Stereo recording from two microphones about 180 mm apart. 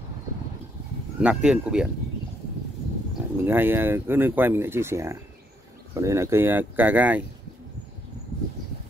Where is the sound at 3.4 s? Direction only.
10° right (ahead or behind).